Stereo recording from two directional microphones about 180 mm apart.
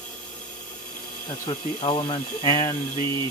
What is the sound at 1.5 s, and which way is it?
Speech, 30° left (ahead or behind).